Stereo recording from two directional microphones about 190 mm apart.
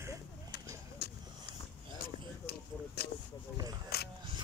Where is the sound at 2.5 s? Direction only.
60° left (ahead or behind).